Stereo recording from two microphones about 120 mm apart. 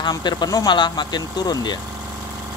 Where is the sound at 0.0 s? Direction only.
40° left (ahead or behind).